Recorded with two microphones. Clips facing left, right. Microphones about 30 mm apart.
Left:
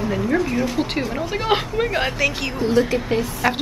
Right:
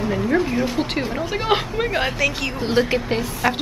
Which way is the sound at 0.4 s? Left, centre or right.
Centre.